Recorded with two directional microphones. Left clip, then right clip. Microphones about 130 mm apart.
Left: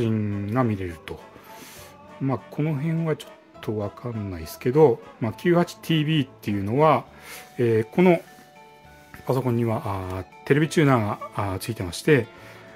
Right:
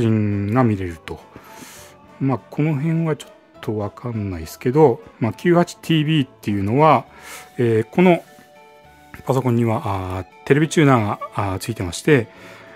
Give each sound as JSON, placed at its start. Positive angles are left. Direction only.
{"t": 0.0, "sound": "speech", "side_deg": -55}
{"t": 9.1, "sound": "speech", "side_deg": -60}